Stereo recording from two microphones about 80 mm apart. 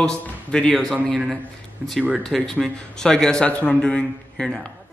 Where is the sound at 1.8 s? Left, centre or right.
Centre.